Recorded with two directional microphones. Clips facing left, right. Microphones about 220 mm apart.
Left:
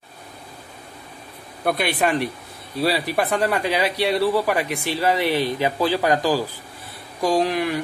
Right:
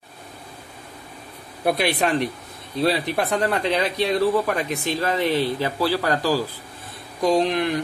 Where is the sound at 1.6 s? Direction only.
Centre (ahead or behind); by 6.4 s 15° left (ahead or behind).